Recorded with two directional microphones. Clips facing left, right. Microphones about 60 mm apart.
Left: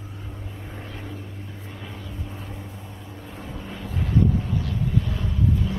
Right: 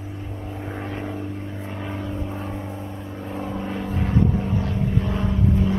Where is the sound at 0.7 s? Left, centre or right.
Right.